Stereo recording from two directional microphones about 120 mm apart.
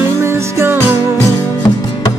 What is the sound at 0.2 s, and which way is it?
Music, 20° right (ahead or behind).